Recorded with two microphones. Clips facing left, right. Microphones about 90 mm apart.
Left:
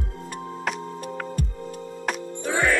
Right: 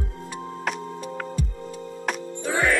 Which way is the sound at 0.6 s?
Centre (ahead or behind).